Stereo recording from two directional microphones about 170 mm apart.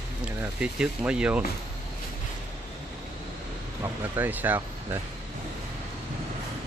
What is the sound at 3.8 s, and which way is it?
Speech, 10° right (ahead or behind).